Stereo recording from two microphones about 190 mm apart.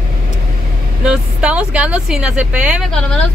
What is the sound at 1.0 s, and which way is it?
Speech, 5° right (ahead or behind).